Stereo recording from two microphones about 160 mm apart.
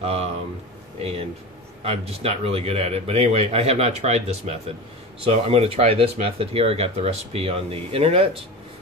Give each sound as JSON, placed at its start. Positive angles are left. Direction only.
{"t": 0.0, "sound": "speech", "side_deg": -40}
{"t": 1.8, "sound": "speech", "side_deg": -40}